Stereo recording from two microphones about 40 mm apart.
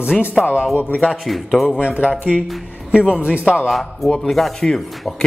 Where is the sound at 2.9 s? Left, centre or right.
Right.